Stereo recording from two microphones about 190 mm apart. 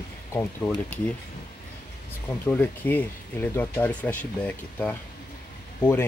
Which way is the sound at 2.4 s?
10° left (ahead or behind).